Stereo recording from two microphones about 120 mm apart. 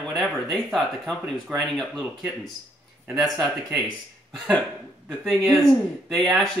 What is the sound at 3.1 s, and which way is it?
Speech, centre (ahead or behind).